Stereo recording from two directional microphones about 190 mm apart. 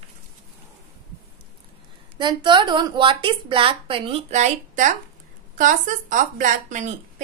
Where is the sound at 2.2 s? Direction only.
25° right (ahead or behind).